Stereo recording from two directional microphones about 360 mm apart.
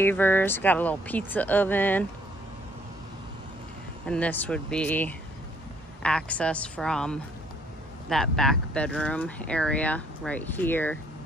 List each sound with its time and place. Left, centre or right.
0.0 s speech: centre
4.0 s speech: centre